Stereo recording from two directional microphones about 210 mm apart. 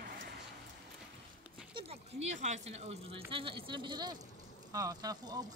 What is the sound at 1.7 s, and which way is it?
Speech, 30° right (ahead or behind).